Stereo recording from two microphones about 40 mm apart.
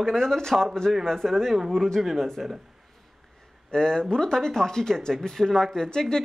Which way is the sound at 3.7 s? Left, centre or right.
Centre.